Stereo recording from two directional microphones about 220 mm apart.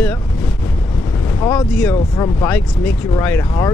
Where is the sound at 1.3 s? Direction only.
10° left (ahead or behind).